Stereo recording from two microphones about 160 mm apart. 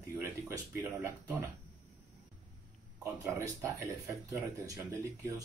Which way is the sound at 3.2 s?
20° right (ahead or behind).